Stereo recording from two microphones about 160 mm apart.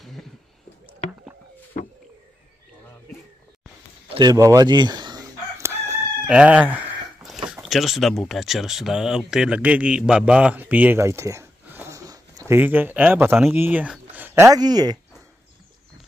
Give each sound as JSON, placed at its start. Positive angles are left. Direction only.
{"t": 4.1, "sound": "crowing", "side_deg": -25}
{"t": 6.2, "sound": "a sound", "side_deg": -5}
{"t": 7.4, "sound": "speech", "side_deg": -5}